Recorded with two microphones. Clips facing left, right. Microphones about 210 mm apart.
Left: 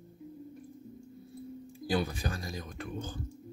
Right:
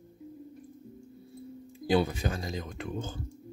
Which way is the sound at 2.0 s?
25° right (ahead or behind).